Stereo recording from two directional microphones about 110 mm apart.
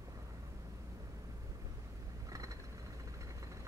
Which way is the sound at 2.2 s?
30° right (ahead or behind).